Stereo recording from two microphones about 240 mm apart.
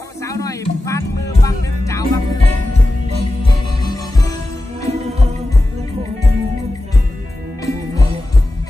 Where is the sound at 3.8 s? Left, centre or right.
Centre.